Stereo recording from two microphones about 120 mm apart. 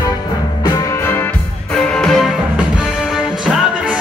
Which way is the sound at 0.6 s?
25° left (ahead or behind).